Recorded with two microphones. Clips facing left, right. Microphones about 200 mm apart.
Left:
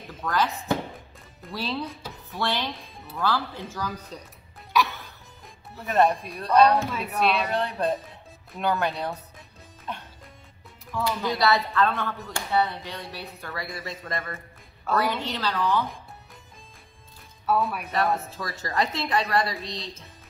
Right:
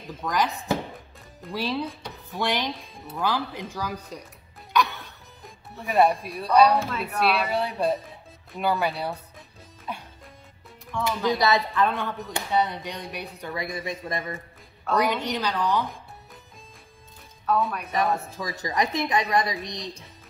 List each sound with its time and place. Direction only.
0.2 s speech: 15° right (ahead or behind)
4.7 s music: centre (ahead or behind)
5.9 s speech: 10° right (ahead or behind)
9.9 s music: 10° right (ahead or behind)
10.9 s speech: centre (ahead or behind)
11.2 s speech: 20° right (ahead or behind)
17.5 s speech: 5° left (ahead or behind)
18.3 s speech: 15° right (ahead or behind)